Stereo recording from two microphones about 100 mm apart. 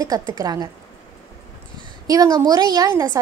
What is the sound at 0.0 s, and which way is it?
Speech, 40° right (ahead or behind).